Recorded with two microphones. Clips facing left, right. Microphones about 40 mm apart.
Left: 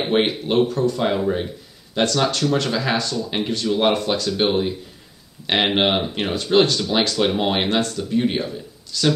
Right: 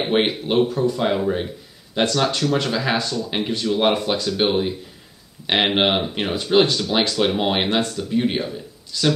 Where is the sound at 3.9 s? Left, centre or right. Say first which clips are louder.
Even; centre.